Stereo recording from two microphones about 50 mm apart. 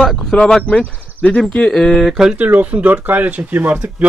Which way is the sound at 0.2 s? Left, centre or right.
Centre.